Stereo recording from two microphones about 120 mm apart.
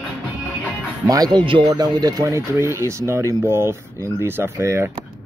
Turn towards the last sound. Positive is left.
turn(degrees=-20)  # may be behind; listen again after turning